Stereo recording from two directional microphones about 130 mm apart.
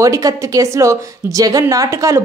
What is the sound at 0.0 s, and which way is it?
A woman's voice, 25° right (ahead or behind).